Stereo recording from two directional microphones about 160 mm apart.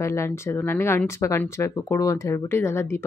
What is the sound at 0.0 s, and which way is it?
Speech, 15° left (ahead or behind).